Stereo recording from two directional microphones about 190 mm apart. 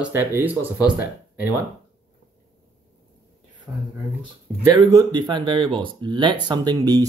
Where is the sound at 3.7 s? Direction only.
15° right (ahead or behind).